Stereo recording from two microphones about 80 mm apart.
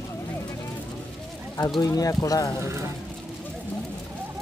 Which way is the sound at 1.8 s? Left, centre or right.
Left.